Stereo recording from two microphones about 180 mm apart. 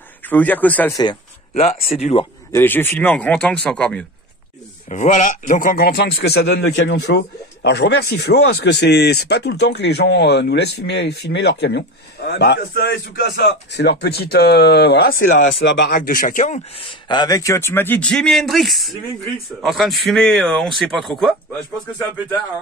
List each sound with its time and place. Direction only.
0.2 s speech: 10° left (ahead or behind)
1.5 s speech: 35° left (ahead or behind)
2.5 s speech: 10° left (ahead or behind)
4.8 s a man's voice: 40° left (ahead or behind); by 21.4 s centre (ahead or behind)